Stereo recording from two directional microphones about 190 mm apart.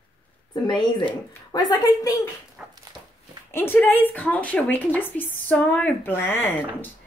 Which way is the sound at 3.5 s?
10° left (ahead or behind).